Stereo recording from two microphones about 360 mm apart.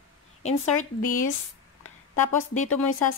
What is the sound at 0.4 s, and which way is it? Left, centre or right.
Speech, centre.